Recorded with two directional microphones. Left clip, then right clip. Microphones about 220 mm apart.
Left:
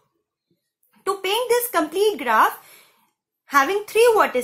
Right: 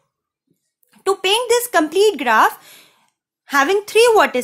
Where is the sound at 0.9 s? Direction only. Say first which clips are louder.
Right 6 dB; 40° right (ahead or behind).